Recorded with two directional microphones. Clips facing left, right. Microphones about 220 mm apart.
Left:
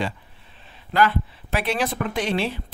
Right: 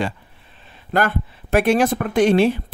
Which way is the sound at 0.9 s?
50° right (ahead or behind).